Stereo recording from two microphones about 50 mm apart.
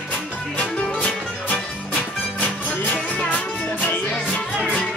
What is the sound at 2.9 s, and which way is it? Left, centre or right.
Music, left.